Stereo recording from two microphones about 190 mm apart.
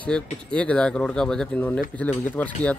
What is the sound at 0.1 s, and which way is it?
Speech, 5° left (ahead or behind).